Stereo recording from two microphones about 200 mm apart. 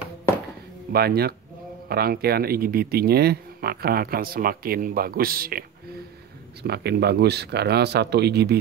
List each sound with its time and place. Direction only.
0.9 s speech: 50° right (ahead or behind)